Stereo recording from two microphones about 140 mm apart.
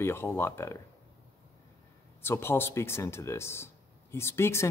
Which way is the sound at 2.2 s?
15° left (ahead or behind).